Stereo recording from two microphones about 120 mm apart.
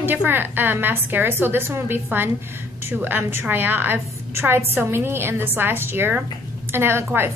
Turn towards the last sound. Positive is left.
turn(degrees=-20)  # may be behind; listen again after turning